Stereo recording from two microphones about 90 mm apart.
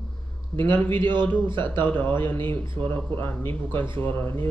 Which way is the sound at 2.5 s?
75° right (ahead or behind).